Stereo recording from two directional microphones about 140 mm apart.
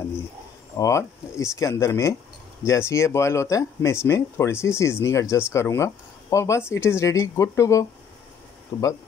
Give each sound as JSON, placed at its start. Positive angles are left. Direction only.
{"t": 0.7, "sound": "speech", "side_deg": 20}